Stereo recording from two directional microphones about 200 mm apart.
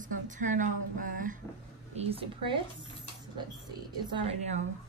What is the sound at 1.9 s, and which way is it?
Speech, 25° right (ahead or behind).